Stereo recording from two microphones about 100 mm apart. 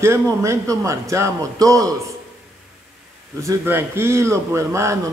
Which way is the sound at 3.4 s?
25° right (ahead or behind).